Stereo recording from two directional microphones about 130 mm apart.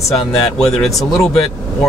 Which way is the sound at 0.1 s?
5° left (ahead or behind).